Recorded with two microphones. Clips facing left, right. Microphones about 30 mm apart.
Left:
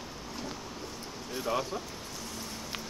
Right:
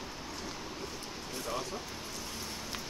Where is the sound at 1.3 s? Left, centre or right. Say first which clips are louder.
Left 6 dB; centre.